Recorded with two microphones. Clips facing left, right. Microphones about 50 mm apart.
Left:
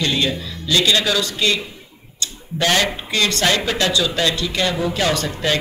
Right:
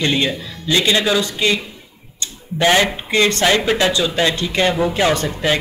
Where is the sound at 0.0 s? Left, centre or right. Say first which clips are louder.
Right 2 dB; right.